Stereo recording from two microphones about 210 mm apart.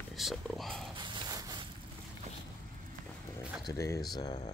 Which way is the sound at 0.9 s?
20° right (ahead or behind).